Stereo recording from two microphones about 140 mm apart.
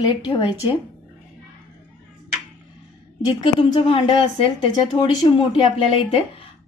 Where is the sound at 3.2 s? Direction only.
35° left (ahead or behind).